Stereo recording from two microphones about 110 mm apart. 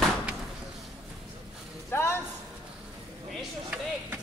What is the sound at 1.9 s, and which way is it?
Speech, 20° left (ahead or behind).